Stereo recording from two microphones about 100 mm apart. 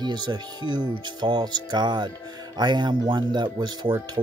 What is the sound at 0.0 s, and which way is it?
Speech, 45° right (ahead or behind).